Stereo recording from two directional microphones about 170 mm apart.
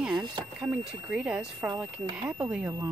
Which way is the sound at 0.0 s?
Centre (ahead or behind).